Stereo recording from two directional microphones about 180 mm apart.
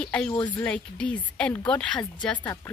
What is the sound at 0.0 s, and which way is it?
Speech, 5° left (ahead or behind).